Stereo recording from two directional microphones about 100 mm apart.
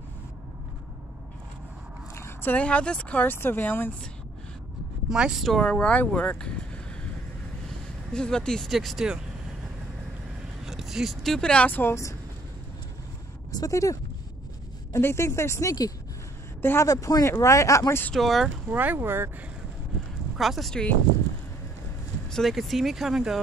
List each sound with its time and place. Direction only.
2.1 s speech: 20° left (ahead or behind)
5.1 s speech: 5° right (ahead or behind); by 6.5 s 10° left (ahead or behind)
8.1 s speech: 10° left (ahead or behind); by 12.2 s 30° left (ahead or behind)
13.5 s speech: 35° left (ahead or behind)
18.1 s speech: centre (ahead or behind)
18.7 s speech: 20° right (ahead or behind)
20.3 s speech: centre (ahead or behind)
22.3 s speech: centre (ahead or behind)